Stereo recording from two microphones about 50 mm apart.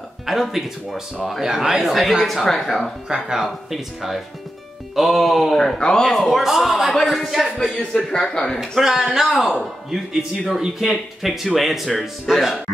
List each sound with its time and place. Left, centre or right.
0.3 s speech: centre
3.1 s speech: centre
5.8 s speech: centre
6.0 s speech: centre
7.0 s speech: centre
7.2 s speech: centre
8.1 s speech: centre
8.5 s speech: centre